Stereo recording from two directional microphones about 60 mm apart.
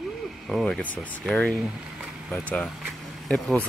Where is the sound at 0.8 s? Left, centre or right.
Left.